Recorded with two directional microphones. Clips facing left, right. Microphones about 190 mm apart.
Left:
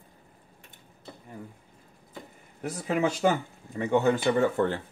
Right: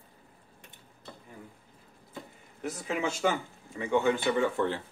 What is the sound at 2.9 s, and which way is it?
Speech, 40° left (ahead or behind).